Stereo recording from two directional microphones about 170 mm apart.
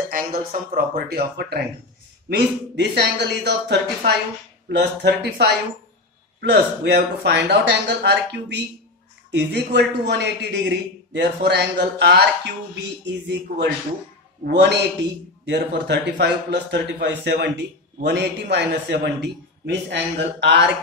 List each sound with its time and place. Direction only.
0.1 s speech: 55° right (ahead or behind)
2.2 s a man's voice: 85° right
13.0 s a man's voice: 90° right